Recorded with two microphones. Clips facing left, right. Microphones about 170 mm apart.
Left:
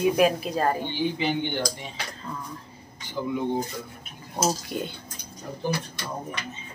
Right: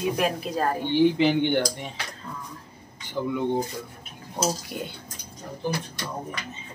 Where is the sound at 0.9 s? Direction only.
65° right (ahead or behind).